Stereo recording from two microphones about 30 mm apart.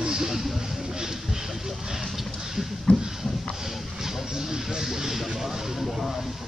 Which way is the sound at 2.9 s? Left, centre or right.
Left.